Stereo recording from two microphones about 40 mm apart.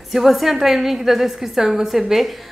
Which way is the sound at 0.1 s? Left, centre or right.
Centre.